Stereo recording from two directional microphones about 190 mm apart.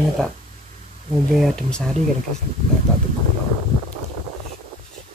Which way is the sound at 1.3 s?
Centre (ahead or behind).